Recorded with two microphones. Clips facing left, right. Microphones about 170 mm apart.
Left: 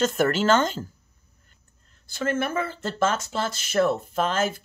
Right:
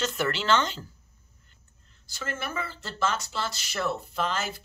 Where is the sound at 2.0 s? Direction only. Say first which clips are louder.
Left 9 dB; 55° left (ahead or behind).